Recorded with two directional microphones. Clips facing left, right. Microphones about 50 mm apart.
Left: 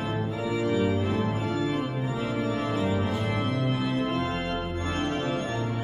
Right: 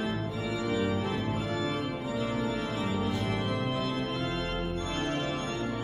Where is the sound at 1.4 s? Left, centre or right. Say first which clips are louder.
Left 4 dB; centre.